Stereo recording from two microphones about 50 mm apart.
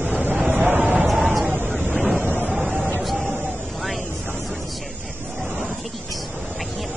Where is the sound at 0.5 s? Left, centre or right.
Right.